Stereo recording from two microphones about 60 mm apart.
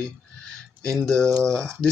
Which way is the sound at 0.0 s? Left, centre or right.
Centre.